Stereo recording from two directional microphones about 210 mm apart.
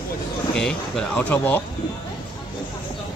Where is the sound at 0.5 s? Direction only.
5° left (ahead or behind).